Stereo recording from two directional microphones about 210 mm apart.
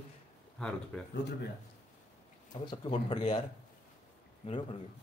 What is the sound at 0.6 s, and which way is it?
Speech, 5° left (ahead or behind).